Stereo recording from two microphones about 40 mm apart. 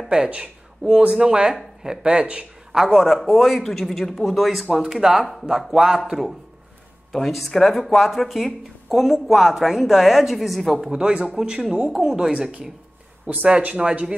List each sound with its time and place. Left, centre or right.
0.1 s speech: centre
2.0 s speech: right
2.7 s speech: centre
3.1 s a woman's voice: centre
4.6 s speech: centre
7.1 s a woman's voice: centre
10.9 s speech: right